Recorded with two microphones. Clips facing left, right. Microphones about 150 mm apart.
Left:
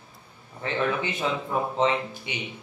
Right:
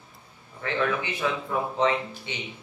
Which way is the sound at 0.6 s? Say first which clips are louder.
Even; 25° left (ahead or behind).